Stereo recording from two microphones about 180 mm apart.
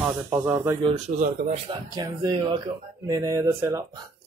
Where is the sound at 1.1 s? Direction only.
40° right (ahead or behind).